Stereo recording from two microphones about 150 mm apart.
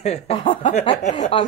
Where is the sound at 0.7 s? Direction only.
45° left (ahead or behind).